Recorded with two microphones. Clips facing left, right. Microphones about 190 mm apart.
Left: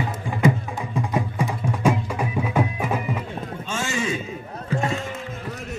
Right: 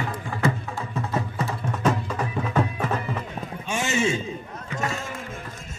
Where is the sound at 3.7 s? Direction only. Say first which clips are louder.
Right 3 dB; 20° right (ahead or behind).